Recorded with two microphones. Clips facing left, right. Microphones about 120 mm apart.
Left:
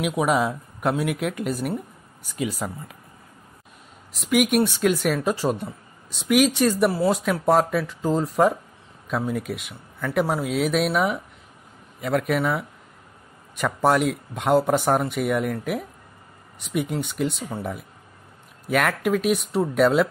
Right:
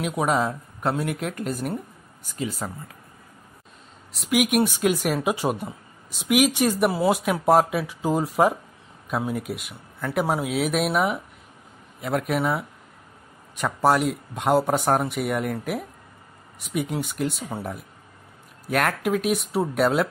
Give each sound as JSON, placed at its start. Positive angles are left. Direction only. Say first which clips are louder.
{"t": 0.0, "sound": "a man's voice", "louder": "left 1 dB", "side_deg": 5}
{"t": 1.2, "sound": "speech", "louder": "left 3 dB", "side_deg": -40}
{"t": 4.1, "sound": "speech", "louder": "left 1 dB", "side_deg": 0}
{"t": 18.7, "sound": "speech", "louder": "left 1 dB", "side_deg": 0}